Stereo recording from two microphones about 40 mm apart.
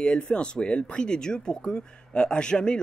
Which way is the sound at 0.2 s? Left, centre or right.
Left.